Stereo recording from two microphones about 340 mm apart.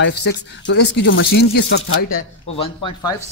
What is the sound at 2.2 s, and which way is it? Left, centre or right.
Speech, centre.